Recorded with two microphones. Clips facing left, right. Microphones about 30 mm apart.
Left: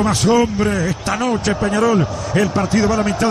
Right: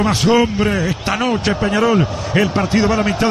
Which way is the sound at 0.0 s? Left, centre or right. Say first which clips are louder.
Right 1 dB; right.